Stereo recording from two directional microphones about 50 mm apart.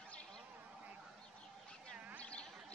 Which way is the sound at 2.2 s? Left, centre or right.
Left.